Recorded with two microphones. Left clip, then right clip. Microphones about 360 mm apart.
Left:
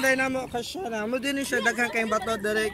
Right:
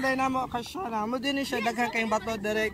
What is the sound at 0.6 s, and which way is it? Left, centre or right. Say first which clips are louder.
Speech: left 1 dB; centre.